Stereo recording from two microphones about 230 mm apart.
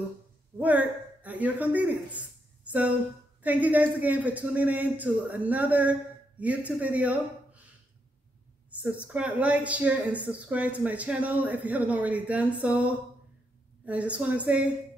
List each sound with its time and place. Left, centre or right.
0.6 s a woman's voice: centre
3.4 s a woman's voice: centre
8.6 s a sound: centre
9.0 s a woman's voice: centre